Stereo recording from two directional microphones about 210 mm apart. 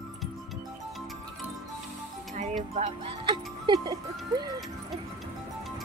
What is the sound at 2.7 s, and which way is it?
Speech, 25° right (ahead or behind).